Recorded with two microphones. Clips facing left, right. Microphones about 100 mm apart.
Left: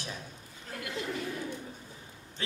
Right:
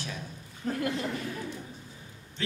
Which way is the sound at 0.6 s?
40° right (ahead or behind).